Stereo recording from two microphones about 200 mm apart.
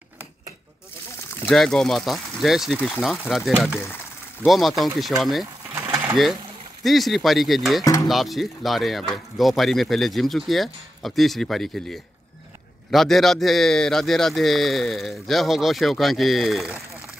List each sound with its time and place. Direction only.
1.5 s a man's voice: centre (ahead or behind)
5.8 s sewing machine: 15° right (ahead or behind)
6.8 s a man's voice: centre (ahead or behind)
7.8 s a sound: 20° left (ahead or behind)
8.1 s a man's voice: centre (ahead or behind)